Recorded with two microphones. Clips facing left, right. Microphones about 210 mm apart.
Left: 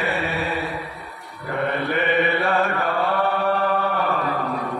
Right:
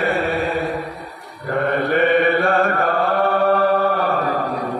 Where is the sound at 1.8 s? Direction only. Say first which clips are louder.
Right 6 dB; 45° right (ahead or behind).